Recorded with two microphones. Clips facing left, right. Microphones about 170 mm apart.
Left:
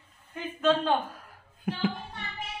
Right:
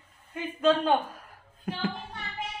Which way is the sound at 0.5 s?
10° right (ahead or behind).